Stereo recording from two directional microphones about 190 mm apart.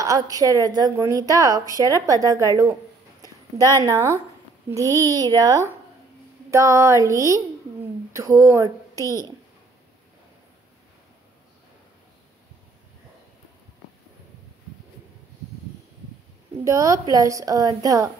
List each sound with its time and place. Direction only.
0.0 s a woman's voice: 20° right (ahead or behind)
3.5 s a woman's voice: 15° left (ahead or behind)
3.8 s a woman's voice: 15° right (ahead or behind)
16.6 s a woman's voice: 15° right (ahead or behind)